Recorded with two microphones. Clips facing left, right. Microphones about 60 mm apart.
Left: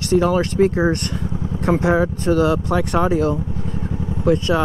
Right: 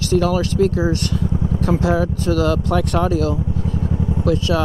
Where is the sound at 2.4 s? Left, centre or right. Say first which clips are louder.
Even; centre.